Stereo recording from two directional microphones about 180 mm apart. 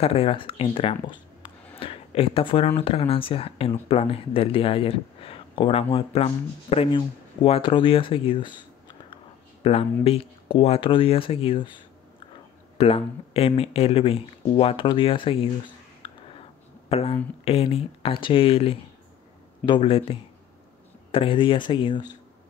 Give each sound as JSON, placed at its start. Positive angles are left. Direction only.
{"t": 0.0, "sound": "speech", "side_deg": 30}
{"t": 9.1, "sound": "a sound", "side_deg": 35}
{"t": 10.0, "sound": "speech", "side_deg": 35}
{"t": 16.9, "sound": "speech", "side_deg": 35}